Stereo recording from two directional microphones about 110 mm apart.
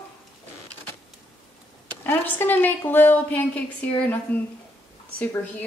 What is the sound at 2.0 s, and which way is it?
A woman's voice, 20° left (ahead or behind).